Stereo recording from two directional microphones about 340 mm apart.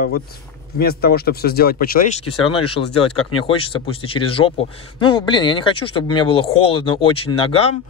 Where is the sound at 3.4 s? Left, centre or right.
Centre.